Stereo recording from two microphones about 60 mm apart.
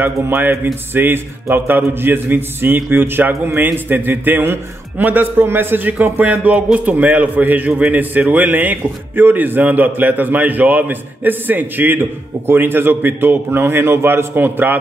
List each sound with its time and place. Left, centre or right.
0.0 s a man's voice: right